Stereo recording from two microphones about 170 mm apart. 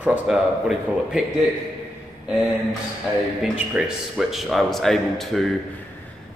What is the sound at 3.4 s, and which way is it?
A man's voice, 5° right (ahead or behind).